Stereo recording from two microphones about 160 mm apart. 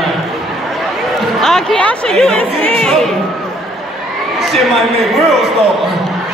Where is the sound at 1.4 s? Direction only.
5° left (ahead or behind).